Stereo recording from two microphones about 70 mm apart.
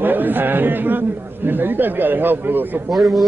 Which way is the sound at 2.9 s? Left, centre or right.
Centre.